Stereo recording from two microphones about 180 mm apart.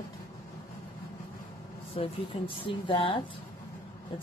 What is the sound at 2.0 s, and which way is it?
Speech, 30° left (ahead or behind).